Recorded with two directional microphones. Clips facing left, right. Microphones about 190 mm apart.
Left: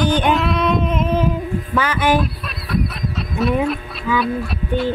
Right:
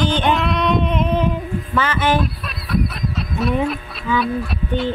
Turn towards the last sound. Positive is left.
turn(degrees=0)  # may be behind; listen again after turning